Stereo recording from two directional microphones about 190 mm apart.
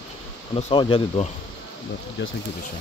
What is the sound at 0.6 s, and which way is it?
Speech, 30° left (ahead or behind).